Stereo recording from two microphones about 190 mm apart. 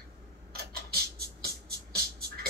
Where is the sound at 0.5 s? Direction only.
55° right (ahead or behind).